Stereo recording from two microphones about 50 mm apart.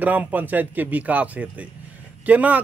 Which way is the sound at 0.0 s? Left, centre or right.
Right.